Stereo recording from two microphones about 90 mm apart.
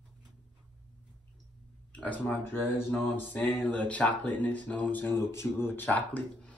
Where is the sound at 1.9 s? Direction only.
15° left (ahead or behind).